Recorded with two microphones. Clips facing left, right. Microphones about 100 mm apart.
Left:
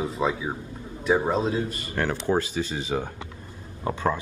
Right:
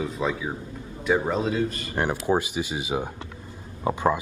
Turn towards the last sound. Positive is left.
turn(degrees=-15)  # may be behind; listen again after turning